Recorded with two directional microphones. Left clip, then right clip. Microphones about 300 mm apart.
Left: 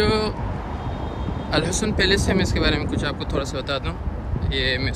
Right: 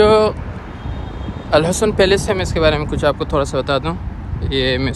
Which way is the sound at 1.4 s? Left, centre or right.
Centre.